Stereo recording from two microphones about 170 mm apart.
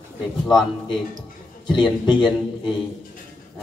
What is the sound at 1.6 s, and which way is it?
Speech, 25° left (ahead or behind).